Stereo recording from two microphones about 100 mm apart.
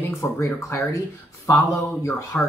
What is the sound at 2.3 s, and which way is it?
Speech, 20° left (ahead or behind).